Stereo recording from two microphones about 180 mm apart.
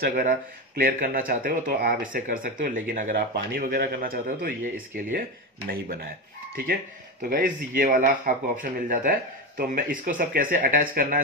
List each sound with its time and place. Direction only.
0.0 s speech: 55° right (ahead or behind)
6.5 s speech: 55° right (ahead or behind)